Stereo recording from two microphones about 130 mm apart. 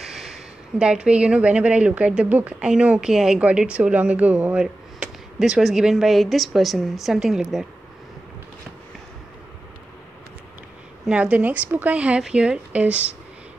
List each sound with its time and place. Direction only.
0.0 s a sound: 5° right (ahead or behind)
0.7 s a woman's voice: 5° right (ahead or behind)
11.1 s a woman's voice: 10° right (ahead or behind)